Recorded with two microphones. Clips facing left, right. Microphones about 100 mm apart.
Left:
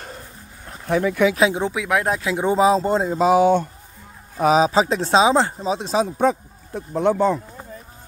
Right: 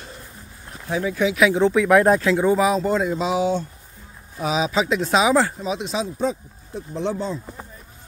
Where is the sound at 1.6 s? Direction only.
5° left (ahead or behind).